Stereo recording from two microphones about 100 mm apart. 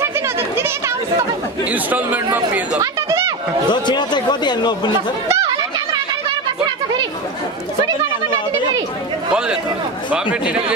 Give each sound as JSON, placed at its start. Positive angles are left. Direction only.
{"t": 0.6, "sound": "chatter", "side_deg": -25}
{"t": 1.7, "sound": "a man's voice", "side_deg": -15}
{"t": 2.8, "sound": "chatter", "side_deg": -35}
{"t": 3.7, "sound": "speech", "side_deg": 45}
{"t": 5.3, "sound": "chatter", "side_deg": -40}